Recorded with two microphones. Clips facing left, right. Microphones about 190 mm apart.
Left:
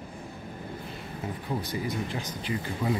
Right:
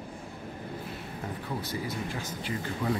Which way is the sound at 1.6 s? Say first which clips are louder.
Left 2 dB; 15° left (ahead or behind).